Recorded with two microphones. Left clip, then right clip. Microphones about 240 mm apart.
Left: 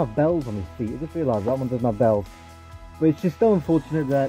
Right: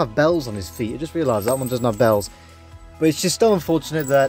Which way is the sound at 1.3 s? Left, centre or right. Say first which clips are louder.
Right 3 dB; right.